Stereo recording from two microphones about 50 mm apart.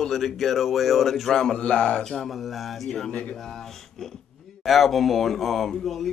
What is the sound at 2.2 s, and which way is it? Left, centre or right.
Speech, centre.